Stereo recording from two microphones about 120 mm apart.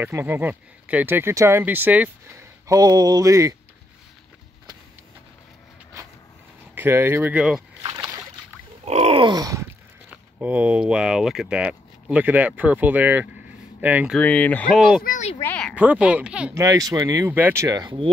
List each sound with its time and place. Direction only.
0.0 s speech: 20° right (ahead or behind)
2.7 s speech: 35° right (ahead or behind)
6.7 s speech: 20° right (ahead or behind)
8.8 s grunt: 60° right (ahead or behind)
9.2 s grunt: 35° right (ahead or behind)
10.4 s speech: 15° right (ahead or behind)
14.1 s speech: 10° left (ahead or behind)
14.7 s speech: centre (ahead or behind)
15.4 s a sound: 10° left (ahead or behind)
15.7 s speech: 15° right (ahead or behind)
16.5 s speech: 30° right (ahead or behind)
17.3 s speech: 15° right (ahead or behind)